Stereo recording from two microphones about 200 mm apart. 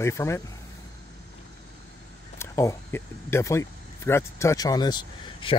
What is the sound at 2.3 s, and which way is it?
Speech, 15° left (ahead or behind).